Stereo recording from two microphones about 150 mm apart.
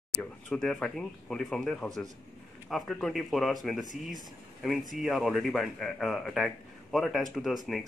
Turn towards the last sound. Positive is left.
turn(degrees=0)  # may be behind; listen again after turning